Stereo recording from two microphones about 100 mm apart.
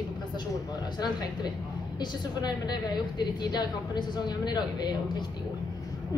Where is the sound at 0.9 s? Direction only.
45° left (ahead or behind).